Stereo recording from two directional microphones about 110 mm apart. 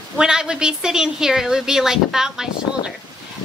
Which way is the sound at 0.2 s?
5° right (ahead or behind).